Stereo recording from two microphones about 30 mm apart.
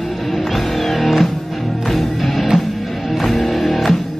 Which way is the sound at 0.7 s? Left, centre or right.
Centre.